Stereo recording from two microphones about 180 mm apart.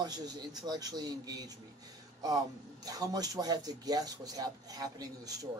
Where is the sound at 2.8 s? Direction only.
20° right (ahead or behind).